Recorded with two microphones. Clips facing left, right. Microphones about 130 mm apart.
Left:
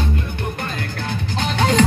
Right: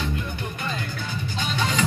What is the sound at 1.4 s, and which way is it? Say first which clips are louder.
Music: left 8 dB; 65° left (ahead or behind).